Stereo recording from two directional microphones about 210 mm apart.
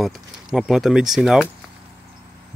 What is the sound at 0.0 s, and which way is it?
Speech, centre (ahead or behind).